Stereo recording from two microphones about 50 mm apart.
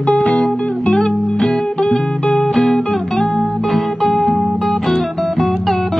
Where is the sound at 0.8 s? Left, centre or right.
Centre.